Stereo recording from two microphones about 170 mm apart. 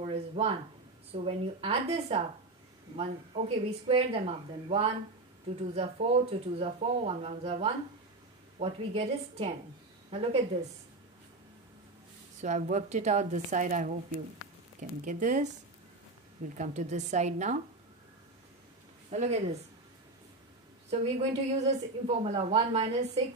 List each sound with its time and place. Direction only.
0.0 s a sound: 35° right (ahead or behind)
1.1 s a woman's voice: 35° right (ahead or behind)
12.4 s a woman's voice: 45° right (ahead or behind)
19.0 s speech: 40° right (ahead or behind)
20.9 s a woman's voice: 40° right (ahead or behind)